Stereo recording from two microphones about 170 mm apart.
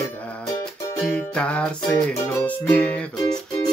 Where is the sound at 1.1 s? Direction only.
5° left (ahead or behind).